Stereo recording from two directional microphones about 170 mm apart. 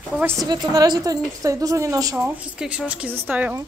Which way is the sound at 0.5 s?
25° right (ahead or behind).